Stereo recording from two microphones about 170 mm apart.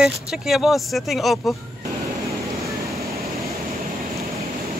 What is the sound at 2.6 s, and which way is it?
Vehicle, 20° right (ahead or behind).